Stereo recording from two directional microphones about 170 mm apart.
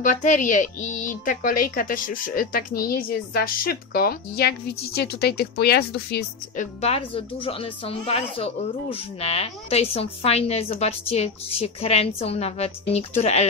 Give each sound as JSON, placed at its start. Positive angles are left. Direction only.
{"t": 0.0, "sound": "a woman's voice", "side_deg": 50}
{"t": 6.6, "sound": "a woman's voice", "side_deg": 40}